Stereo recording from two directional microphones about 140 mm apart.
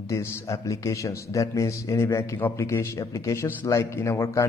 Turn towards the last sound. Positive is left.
turn(degrees=20)  # may be behind; listen again after turning